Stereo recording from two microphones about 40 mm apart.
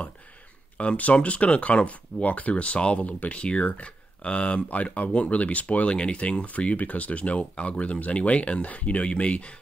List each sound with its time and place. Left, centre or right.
0.7 s speech: left